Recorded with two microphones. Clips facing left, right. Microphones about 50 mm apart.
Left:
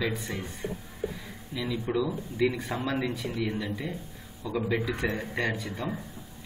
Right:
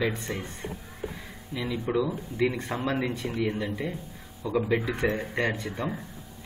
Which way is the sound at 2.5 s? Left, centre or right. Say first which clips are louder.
Right 2 dB; centre.